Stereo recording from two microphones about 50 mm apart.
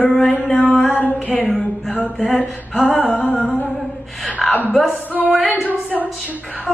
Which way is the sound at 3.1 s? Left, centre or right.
Left.